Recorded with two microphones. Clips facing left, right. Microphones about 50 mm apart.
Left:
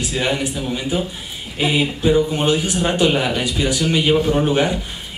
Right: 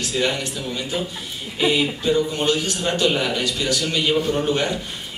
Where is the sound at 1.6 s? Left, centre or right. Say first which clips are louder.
Left 2 dB; centre.